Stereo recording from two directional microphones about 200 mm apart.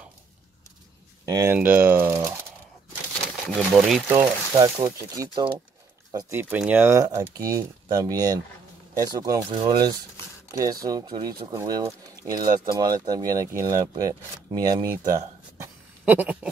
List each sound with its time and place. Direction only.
1.2 s speech: 15° right (ahead or behind)
3.4 s speech: centre (ahead or behind)
4.2 s speech: 20° right (ahead or behind)
6.1 s speech: 10° right (ahead or behind)